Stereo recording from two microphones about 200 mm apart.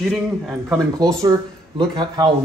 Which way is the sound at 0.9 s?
20° right (ahead or behind).